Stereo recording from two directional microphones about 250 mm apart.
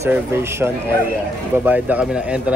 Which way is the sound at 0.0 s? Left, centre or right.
Centre.